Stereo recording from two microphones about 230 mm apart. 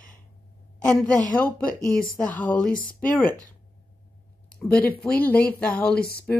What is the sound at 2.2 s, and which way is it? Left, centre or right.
Speech, centre.